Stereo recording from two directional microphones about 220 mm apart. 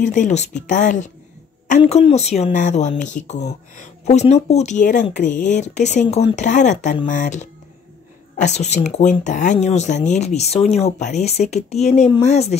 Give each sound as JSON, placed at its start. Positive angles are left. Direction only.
{"t": 0.0, "sound": "speech", "side_deg": 35}